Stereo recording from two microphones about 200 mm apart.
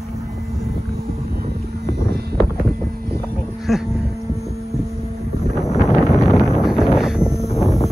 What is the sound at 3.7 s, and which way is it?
Cattle, centre (ahead or behind).